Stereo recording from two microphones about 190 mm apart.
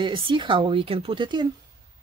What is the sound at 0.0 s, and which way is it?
Speech, 25° right (ahead or behind).